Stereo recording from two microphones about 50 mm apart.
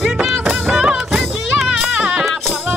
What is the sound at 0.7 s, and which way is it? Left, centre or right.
Music, centre.